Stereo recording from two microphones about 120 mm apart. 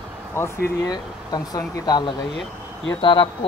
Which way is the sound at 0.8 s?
35° left (ahead or behind).